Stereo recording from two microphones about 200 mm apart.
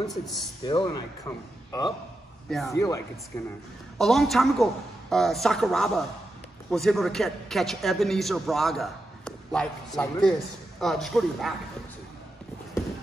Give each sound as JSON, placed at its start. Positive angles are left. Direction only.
{"t": 0.2, "sound": "a man's voice", "side_deg": 0}
{"t": 0.7, "sound": "speech", "side_deg": 20}
{"t": 4.0, "sound": "a man's voice", "side_deg": 0}